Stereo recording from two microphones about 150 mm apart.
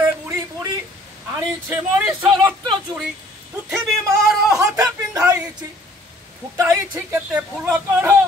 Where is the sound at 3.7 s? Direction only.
Centre (ahead or behind).